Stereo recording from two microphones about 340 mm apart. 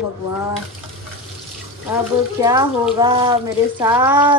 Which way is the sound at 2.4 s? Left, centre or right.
Centre.